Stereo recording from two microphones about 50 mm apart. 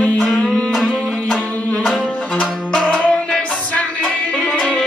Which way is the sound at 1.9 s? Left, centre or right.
Centre.